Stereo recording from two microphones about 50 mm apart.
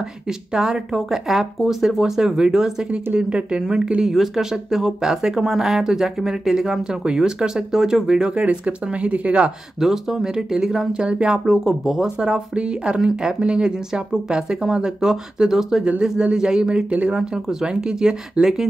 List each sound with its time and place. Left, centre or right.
0.5 s speech: centre
9.8 s speech: centre